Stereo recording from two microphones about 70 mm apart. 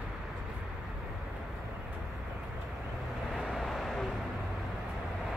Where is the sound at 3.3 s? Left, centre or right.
Centre.